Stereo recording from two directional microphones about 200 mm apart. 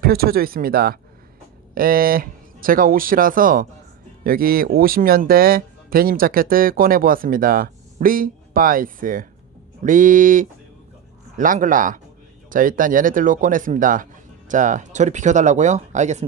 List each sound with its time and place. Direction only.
0.0 s speech: 50° right (ahead or behind)